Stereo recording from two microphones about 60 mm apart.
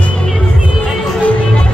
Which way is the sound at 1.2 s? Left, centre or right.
Centre.